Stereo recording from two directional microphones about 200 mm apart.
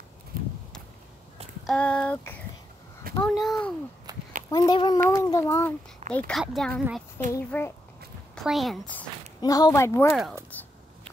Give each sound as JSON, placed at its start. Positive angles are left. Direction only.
{"t": 0.3, "sound": "horse", "side_deg": -45}
{"t": 1.7, "sound": "a child's voice", "side_deg": 5}
{"t": 4.5, "sound": "speech", "side_deg": 20}
{"t": 7.3, "sound": "speech", "side_deg": 15}
{"t": 8.5, "sound": "speech", "side_deg": 0}
{"t": 9.4, "sound": "speech", "side_deg": 20}
{"t": 10.5, "sound": "a sound", "side_deg": 10}